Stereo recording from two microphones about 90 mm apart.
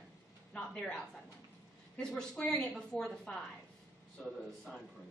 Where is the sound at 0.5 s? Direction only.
10° left (ahead or behind).